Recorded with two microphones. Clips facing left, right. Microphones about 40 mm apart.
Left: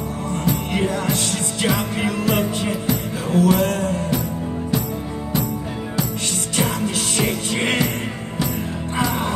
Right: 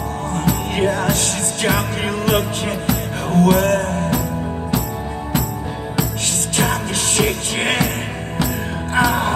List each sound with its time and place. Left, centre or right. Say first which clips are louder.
0.5 s music: right 3 dB; right
5.9 s music: right 2 dB; right
8.9 s music: right 6 dB; right